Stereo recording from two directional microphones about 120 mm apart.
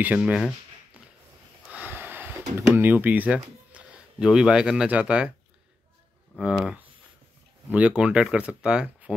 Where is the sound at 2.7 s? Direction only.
15° right (ahead or behind).